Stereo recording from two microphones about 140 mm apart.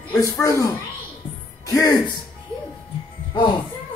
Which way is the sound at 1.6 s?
25° left (ahead or behind).